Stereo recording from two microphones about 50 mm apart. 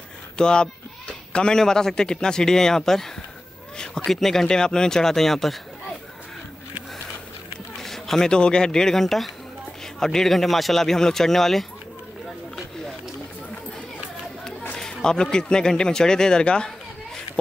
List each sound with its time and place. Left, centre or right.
0.4 s speech: centre
7.8 s speech: centre
14.8 s a man's voice: centre